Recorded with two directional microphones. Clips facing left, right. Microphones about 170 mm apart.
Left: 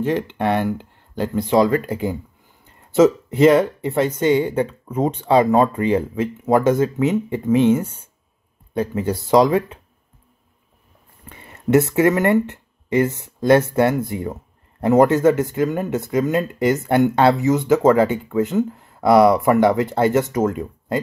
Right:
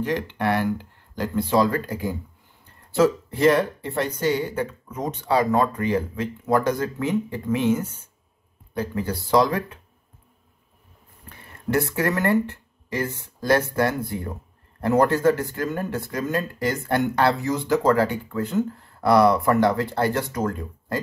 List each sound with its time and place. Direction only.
0.4 s speech: 15° left (ahead or behind)
11.2 s speech: 20° left (ahead or behind)